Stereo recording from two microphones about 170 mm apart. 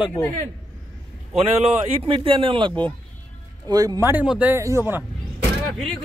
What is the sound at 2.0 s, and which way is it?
Speech, 30° right (ahead or behind).